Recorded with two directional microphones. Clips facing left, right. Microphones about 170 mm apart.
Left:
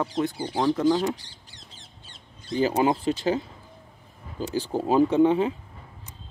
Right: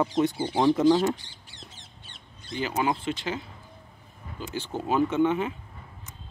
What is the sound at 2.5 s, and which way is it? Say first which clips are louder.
Speech: left 5 dB; 35° left (ahead or behind).